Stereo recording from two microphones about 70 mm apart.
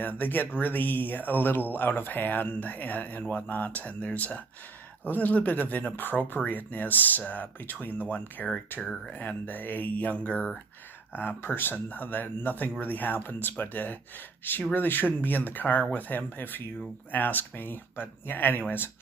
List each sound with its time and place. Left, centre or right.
0.0 s speech: left